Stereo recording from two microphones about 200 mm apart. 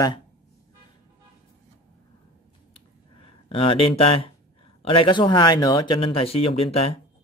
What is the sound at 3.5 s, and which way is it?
Speech, 25° left (ahead or behind).